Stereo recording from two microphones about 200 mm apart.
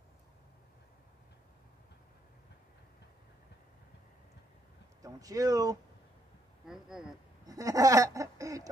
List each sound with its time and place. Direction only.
5.0 s speech: 15° right (ahead or behind)
6.6 s speech: 5° right (ahead or behind)
7.4 s a sound: 15° right (ahead or behind)